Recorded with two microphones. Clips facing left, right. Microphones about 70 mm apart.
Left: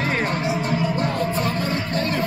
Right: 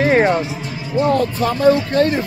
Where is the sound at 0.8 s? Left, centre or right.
Left.